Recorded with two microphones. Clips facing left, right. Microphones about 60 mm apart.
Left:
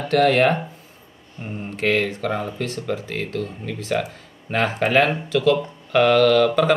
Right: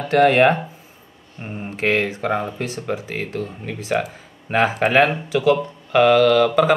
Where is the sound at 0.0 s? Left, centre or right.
Centre.